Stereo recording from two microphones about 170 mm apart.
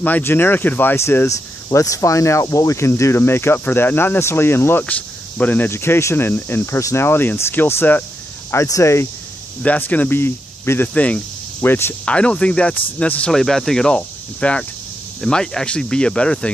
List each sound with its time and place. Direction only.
0.0 s speech: 10° left (ahead or behind)